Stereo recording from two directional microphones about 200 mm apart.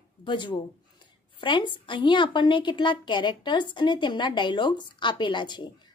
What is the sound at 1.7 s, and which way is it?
A woman's voice, 25° left (ahead or behind).